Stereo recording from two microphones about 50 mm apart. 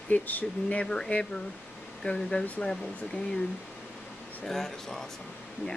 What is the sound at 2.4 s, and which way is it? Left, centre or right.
Speech, left.